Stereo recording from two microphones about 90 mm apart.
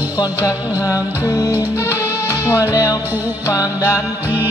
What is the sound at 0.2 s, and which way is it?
Music, 35° left (ahead or behind).